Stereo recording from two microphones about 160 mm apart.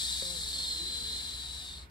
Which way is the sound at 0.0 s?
25° left (ahead or behind).